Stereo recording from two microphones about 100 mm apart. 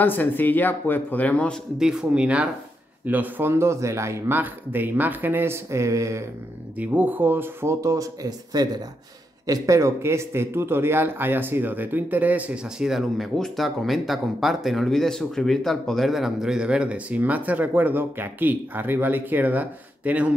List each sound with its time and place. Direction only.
0.0 s speech: 20° left (ahead or behind)
1.8 s a man's voice: 5° right (ahead or behind); by 6.2 s 30° right (ahead or behind)
6.8 s a man's voice: 15° right (ahead or behind)